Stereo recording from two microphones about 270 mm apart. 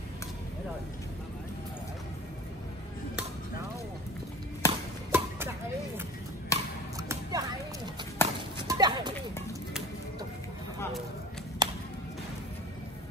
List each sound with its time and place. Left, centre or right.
4.6 s chop: centre
6.5 s a sound: centre
7.0 s a sound: centre
8.2 s clip-clop: centre
8.5 s horse: centre
11.6 s music: centre